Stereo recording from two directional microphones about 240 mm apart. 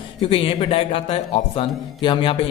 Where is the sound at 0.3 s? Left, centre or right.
Left.